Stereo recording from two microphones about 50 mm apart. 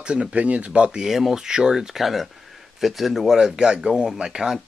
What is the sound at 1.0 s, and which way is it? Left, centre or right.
Speech, centre.